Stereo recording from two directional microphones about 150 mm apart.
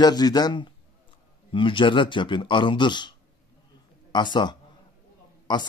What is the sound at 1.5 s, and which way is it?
A man's voice, 35° left (ahead or behind).